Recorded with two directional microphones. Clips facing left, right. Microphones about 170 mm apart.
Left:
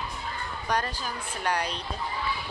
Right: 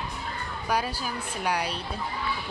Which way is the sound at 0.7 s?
10° right (ahead or behind).